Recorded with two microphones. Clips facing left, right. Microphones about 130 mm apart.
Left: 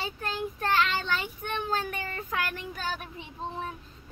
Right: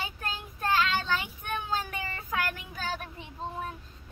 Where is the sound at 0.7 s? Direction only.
15° right (ahead or behind).